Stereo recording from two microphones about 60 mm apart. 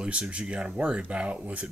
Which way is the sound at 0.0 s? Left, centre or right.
Centre.